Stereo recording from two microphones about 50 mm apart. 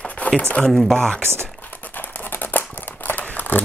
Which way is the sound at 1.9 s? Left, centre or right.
Left.